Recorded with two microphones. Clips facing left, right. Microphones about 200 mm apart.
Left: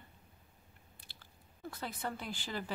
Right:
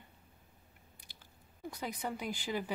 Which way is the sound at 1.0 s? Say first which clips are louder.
Even; 15° right (ahead or behind).